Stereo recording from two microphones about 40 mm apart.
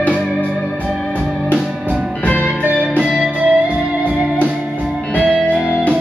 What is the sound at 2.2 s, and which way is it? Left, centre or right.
Music, left.